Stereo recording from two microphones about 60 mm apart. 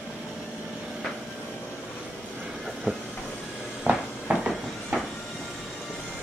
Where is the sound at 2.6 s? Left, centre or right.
Centre.